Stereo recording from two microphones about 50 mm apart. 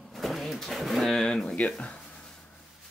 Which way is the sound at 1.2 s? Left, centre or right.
Centre.